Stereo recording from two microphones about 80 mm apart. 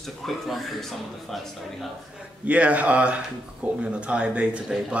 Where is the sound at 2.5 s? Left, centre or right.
Centre.